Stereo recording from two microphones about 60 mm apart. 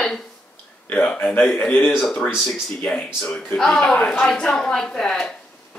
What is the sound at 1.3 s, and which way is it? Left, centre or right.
Speech, left.